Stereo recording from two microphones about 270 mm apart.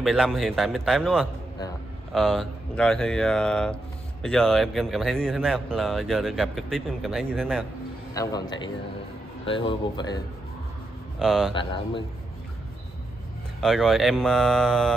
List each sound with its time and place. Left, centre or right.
0.0 s speech: centre
8.1 s a man's voice: centre
11.1 s speech: centre
13.6 s speech: centre